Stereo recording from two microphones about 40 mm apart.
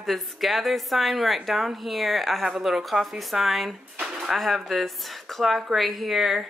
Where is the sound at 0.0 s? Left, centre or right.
Centre.